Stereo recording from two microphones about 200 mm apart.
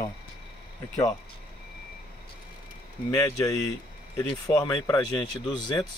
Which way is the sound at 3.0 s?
15° left (ahead or behind).